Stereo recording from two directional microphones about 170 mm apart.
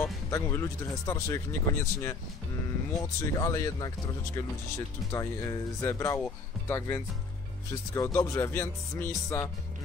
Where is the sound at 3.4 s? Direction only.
20° left (ahead or behind).